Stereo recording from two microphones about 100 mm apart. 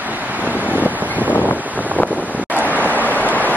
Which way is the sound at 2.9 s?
15° left (ahead or behind).